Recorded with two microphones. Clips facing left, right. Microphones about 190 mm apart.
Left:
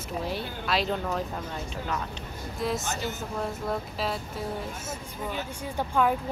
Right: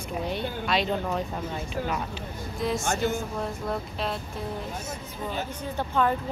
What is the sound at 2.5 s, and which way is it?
Speech, centre (ahead or behind).